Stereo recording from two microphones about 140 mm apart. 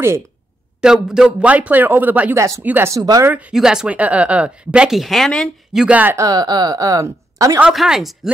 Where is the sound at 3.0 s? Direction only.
25° right (ahead or behind).